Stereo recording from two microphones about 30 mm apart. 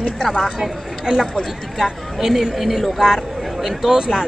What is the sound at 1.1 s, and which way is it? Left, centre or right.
Speech, right.